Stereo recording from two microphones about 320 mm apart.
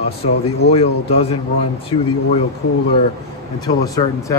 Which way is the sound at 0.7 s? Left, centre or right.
Centre.